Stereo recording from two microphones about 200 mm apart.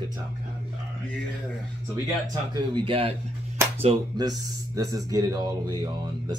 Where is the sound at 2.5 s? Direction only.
25° right (ahead or behind).